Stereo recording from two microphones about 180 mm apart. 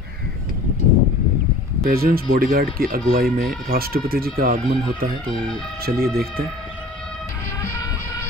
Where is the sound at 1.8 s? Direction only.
55° right (ahead or behind).